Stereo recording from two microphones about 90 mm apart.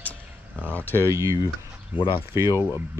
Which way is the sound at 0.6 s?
20° left (ahead or behind).